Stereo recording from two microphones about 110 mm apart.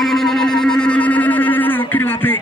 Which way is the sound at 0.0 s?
5° left (ahead or behind).